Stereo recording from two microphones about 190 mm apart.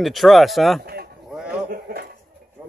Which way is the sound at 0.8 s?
55° right (ahead or behind).